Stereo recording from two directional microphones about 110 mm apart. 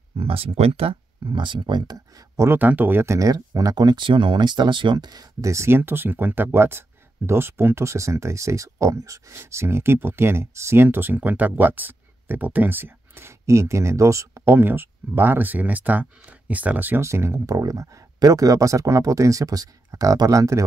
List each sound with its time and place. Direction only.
0.2 s speech: 60° right (ahead or behind); by 20.6 s 30° right (ahead or behind)